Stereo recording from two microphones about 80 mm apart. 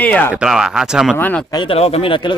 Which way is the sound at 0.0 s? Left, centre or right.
Centre.